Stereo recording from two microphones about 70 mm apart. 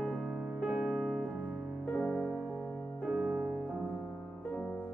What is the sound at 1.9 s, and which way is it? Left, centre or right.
Music, centre.